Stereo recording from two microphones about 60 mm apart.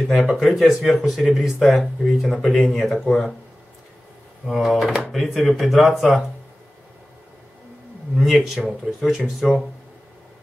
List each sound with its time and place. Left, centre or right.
0.1 s speech: centre
4.5 s speech: centre
8.3 s speech: centre